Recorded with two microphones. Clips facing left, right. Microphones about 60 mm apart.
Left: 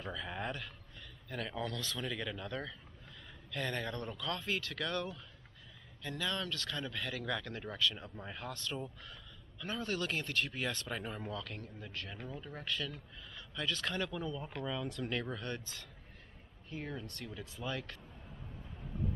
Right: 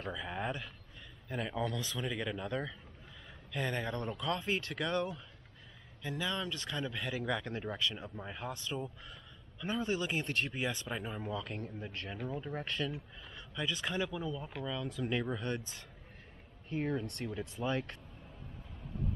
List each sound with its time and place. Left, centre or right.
0.1 s speech: centre
7.9 s speech: centre
10.2 s speech: right
10.5 s speech: centre
11.3 s speech: right
12.5 s speech: right
13.3 s speech: centre
15.0 s speech: centre
16.6 s speech: right